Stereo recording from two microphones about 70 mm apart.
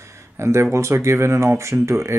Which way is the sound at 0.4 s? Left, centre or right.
Right.